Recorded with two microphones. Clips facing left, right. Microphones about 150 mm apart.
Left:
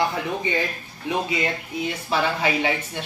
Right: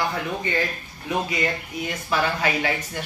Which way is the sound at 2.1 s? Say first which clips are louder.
Even; 25° left (ahead or behind).